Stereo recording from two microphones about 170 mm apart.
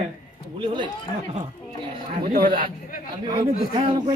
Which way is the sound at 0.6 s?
30° right (ahead or behind).